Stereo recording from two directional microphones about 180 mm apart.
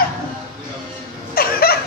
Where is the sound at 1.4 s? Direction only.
55° left (ahead or behind).